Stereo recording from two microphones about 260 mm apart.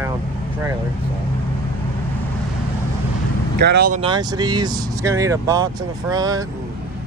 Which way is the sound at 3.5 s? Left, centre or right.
Right.